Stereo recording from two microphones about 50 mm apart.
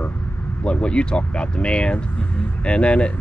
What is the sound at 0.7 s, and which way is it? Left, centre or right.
Speech, left.